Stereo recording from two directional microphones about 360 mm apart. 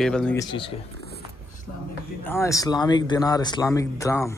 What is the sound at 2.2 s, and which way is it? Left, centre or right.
A man's voice, centre.